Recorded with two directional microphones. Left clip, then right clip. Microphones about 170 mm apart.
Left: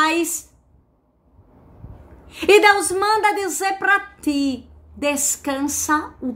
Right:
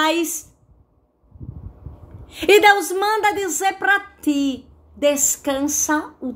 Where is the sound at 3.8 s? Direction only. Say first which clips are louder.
Left 3 dB; 10° left (ahead or behind).